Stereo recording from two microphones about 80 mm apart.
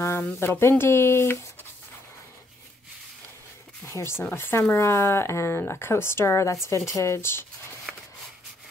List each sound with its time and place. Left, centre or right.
0.2 s speech: left
3.8 s speech: left